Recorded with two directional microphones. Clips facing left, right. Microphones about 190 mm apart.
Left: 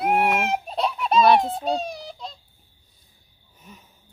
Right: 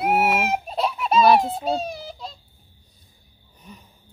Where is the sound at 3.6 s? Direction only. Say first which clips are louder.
Right 3 dB; 5° left (ahead or behind).